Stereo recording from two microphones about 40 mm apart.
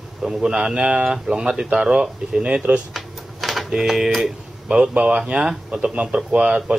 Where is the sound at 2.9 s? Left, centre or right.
Centre.